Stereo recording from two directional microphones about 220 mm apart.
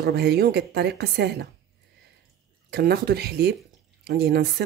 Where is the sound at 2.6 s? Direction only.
45° right (ahead or behind).